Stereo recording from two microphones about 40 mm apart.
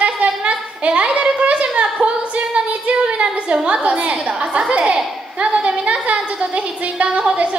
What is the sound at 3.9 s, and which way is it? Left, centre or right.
Child singing, right.